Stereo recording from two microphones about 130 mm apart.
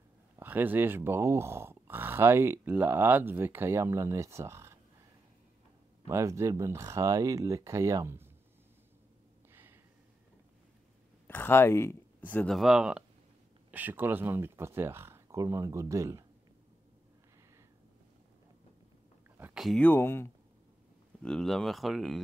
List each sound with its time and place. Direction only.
0.4 s speech: 15° right (ahead or behind)
6.0 s speech: 20° right (ahead or behind)
9.5 s a sound: 15° right (ahead or behind)
11.2 s speech: 15° left (ahead or behind)
12.5 s speech: 5° right (ahead or behind); by 16.3 s 25° right (ahead or behind)
19.5 s speech: centre (ahead or behind)
19.8 s speech: 15° left (ahead or behind)
21.2 s speech: 5° left (ahead or behind)